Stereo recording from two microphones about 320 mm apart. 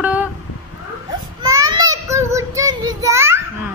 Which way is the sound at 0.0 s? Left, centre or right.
Centre.